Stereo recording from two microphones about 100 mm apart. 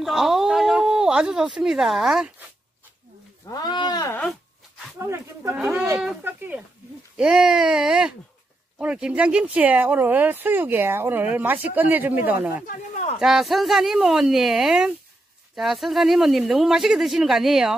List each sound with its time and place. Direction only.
0.0 s a sound: 5° right (ahead or behind)
3.4 s speech: 40° left (ahead or behind)
4.9 s speech: 30° right (ahead or behind)
7.2 s speech: 5° right (ahead or behind)
13.2 s speech: 5° right (ahead or behind)